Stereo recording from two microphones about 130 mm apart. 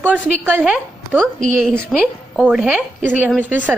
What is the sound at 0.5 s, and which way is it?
Speech, 10° right (ahead or behind).